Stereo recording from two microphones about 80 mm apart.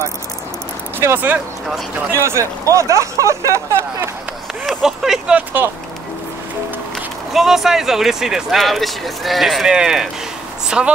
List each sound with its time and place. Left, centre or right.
0.9 s speech: right
2.1 s speech: right
4.6 s speech: centre
5.3 s speech: right
7.3 s speech: centre